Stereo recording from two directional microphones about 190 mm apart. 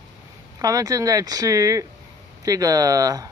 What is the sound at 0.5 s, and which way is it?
Speech, 20° right (ahead or behind).